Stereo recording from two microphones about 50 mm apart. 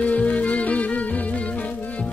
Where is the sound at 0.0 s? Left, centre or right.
Left.